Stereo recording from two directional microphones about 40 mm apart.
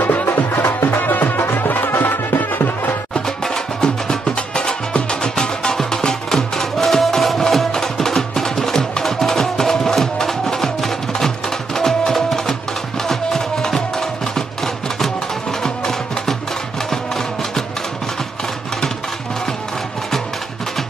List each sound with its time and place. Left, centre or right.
0.0 s music: left
0.8 s music: left
1.4 s music: left
3.4 s music: centre
15.6 s music: centre